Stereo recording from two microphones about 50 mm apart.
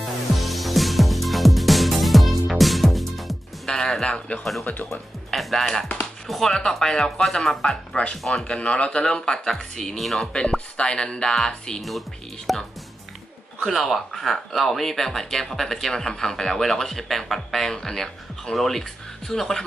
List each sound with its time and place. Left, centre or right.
0.0 s music: centre
3.7 s music: centre
4.4 s speech: centre
8.5 s speech: left; by 10.3 s centre
10.8 s speech: centre
12.5 s speech: centre
13.7 s speech: centre